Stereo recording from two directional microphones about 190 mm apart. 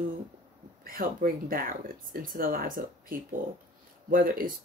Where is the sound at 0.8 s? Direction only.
50° right (ahead or behind).